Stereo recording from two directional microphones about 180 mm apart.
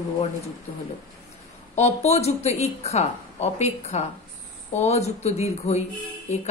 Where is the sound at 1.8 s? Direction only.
35° left (ahead or behind).